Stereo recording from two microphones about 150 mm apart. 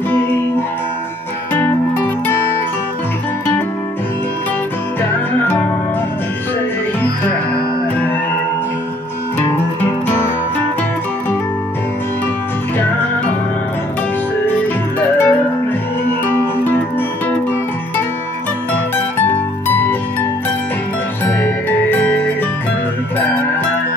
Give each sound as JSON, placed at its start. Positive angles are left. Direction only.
{"t": 0.1, "sound": "music", "side_deg": 15}
{"t": 15.0, "sound": "music", "side_deg": 15}
{"t": 19.2, "sound": "music", "side_deg": 15}
{"t": 21.3, "sound": "music", "side_deg": 15}